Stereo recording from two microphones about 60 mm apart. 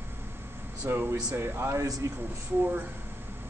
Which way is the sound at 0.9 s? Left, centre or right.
Right.